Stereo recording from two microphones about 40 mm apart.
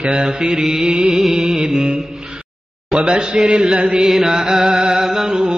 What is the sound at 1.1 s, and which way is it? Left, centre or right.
Mantra, centre.